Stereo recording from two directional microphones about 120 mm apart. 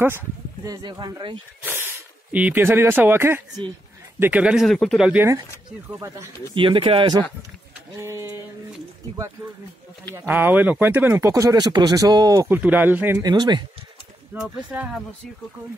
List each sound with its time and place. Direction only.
0.7 s speech: 40° right (ahead or behind)
1.6 s speech: 20° right (ahead or behind)
4.6 s speech: 5° left (ahead or behind)
5.0 s speech: 10° right (ahead or behind)
5.9 s speech: 25° right (ahead or behind)
6.5 s speech: 45° right (ahead or behind)
8.0 s speech: 25° right (ahead or behind)
10.2 s speech: 15° right (ahead or behind); by 12.4 s 30° right (ahead or behind)
12.4 s speech: 15° right (ahead or behind)
13.2 s speech: 35° right (ahead or behind)
14.4 s speech: 10° right (ahead or behind)